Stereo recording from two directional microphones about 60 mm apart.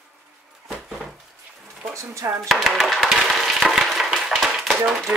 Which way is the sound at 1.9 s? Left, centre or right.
Right.